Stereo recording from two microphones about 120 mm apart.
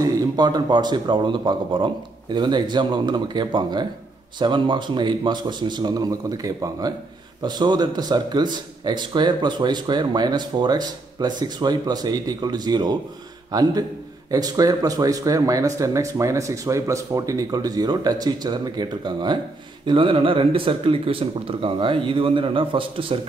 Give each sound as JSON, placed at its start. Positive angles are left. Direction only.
{"t": 0.0, "sound": "a man's voice", "side_deg": -30}